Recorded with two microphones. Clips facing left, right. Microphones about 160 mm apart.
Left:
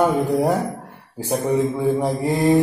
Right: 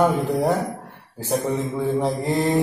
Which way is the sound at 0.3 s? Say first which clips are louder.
Left 2 dB; 15° left (ahead or behind).